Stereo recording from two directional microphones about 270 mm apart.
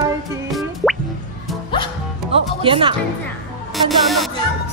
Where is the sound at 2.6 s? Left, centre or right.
Centre.